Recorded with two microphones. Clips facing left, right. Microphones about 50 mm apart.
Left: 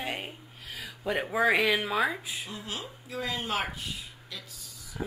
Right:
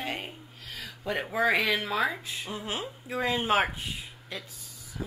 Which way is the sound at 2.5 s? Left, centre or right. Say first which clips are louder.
Right 4 dB; right.